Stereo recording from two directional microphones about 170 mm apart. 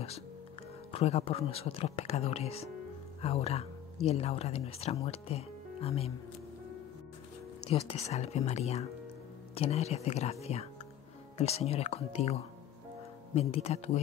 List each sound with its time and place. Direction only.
0.9 s speech: 35° left (ahead or behind)
7.7 s speech: 40° left (ahead or behind)